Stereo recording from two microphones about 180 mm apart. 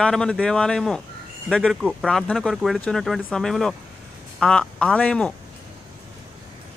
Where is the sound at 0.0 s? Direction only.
5° left (ahead or behind).